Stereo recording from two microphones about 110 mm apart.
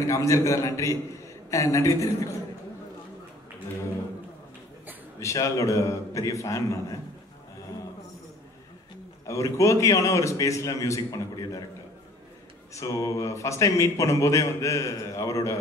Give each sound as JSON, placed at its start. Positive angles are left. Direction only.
{"t": 0.0, "sound": "a man's voice", "side_deg": 30}
{"t": 5.2, "sound": "a man's voice", "side_deg": 30}
{"t": 9.3, "sound": "a man's voice", "side_deg": 30}
{"t": 12.7, "sound": "a man's voice", "side_deg": 30}